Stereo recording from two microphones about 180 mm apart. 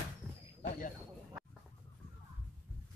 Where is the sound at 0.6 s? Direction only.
45° left (ahead or behind).